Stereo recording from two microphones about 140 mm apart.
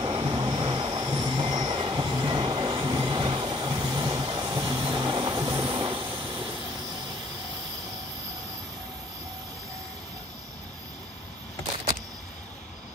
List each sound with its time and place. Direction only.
0.0 s train: 35° right (ahead or behind)
3.1 s vehicle: 35° right (ahead or behind)